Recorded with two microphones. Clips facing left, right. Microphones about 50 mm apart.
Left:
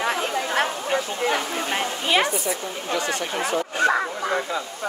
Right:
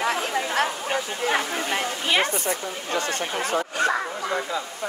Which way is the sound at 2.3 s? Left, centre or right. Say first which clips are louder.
Left 1 dB; right.